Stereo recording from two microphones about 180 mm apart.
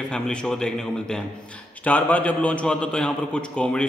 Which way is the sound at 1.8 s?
10° left (ahead or behind).